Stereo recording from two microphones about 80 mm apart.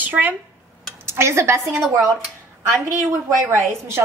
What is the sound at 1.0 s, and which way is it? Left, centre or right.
Speech, right.